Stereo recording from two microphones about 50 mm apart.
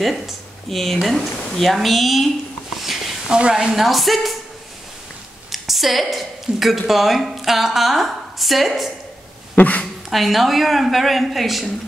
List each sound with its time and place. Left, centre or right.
0.7 s a woman's voice: centre
2.8 s a sound: centre
3.3 s speech: centre
3.5 s a woman's voice: centre
5.5 s a woman's voice: centre
9.6 s speech: left
10.0 s a woman's voice: centre